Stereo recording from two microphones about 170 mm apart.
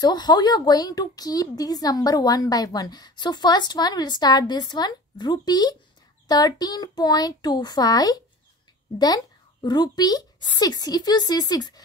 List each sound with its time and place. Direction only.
0.0 s a woman's voice: 25° left (ahead or behind)